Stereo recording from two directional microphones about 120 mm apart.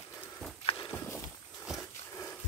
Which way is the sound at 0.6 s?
40° left (ahead or behind).